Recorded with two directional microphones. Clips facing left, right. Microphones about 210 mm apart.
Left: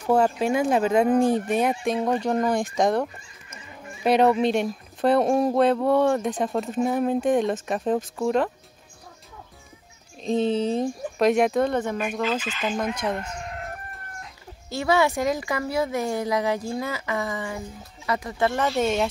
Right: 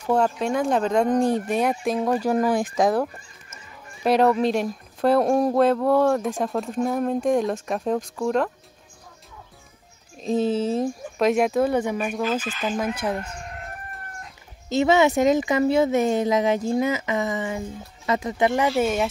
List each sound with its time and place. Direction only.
0.1 s speech: 5° left (ahead or behind)
10.2 s speech: 5° right (ahead or behind)
14.7 s speech: 20° right (ahead or behind)